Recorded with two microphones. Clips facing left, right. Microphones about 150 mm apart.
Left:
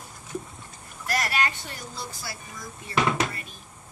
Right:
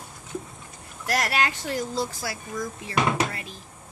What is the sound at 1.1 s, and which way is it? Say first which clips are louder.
Speech: right 2 dB; 75° right (ahead or behind).